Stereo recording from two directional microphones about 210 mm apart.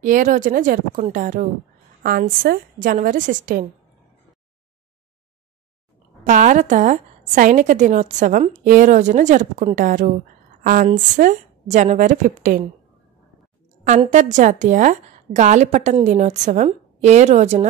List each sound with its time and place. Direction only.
0.0 s a woman's voice: 40° right (ahead or behind)
6.2 s a woman's voice: 35° right (ahead or behind)
13.8 s a woman's voice: 35° right (ahead or behind)